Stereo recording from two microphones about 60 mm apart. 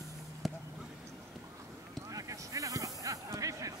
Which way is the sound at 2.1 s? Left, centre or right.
Right.